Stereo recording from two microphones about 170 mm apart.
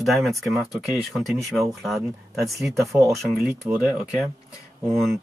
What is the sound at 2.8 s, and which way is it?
Speech, 15° right (ahead or behind).